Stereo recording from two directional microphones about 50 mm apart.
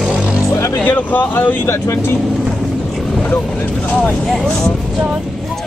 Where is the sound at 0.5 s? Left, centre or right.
Left.